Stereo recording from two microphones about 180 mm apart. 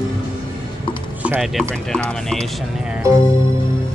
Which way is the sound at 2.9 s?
15° right (ahead or behind).